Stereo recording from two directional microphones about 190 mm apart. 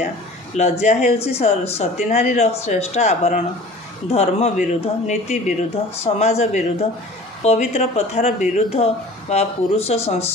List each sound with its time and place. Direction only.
0.6 s speech: 35° left (ahead or behind)